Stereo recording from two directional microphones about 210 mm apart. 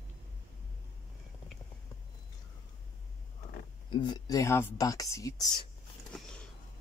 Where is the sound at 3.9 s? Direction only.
20° left (ahead or behind).